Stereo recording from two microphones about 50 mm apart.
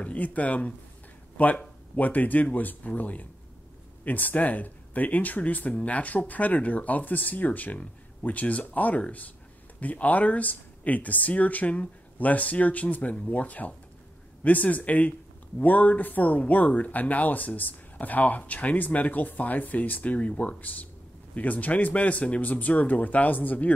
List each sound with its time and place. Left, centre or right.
0.0 s speech: left